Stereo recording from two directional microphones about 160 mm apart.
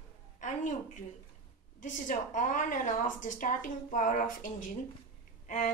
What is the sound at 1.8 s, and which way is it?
A woman's voice, 55° left (ahead or behind).